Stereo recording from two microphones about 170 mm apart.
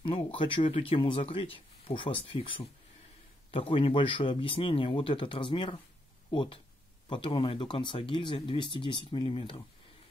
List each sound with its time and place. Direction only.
0.0 s speech: 30° left (ahead or behind)